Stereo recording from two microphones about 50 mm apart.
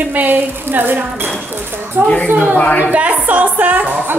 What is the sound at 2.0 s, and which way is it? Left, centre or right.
Speech, right.